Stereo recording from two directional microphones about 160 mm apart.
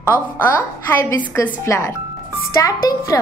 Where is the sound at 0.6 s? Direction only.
15° left (ahead or behind).